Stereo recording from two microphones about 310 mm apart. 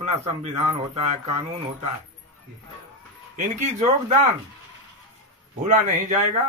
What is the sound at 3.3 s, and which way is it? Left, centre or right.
Speech, right.